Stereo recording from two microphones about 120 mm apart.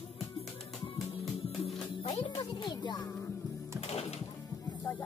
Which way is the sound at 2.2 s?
40° left (ahead or behind).